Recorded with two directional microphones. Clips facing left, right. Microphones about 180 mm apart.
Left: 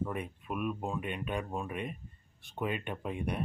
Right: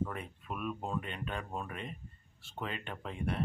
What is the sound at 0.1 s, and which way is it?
Speech, 15° left (ahead or behind).